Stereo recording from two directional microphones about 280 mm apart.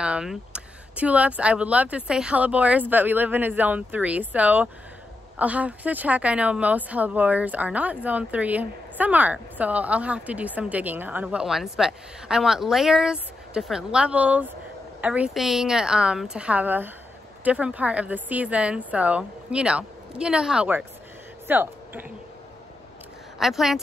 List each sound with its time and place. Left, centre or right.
0.0 s speech: centre
23.4 s speech: centre